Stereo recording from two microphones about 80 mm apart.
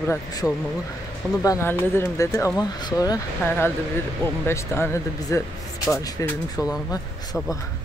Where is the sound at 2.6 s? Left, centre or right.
Left.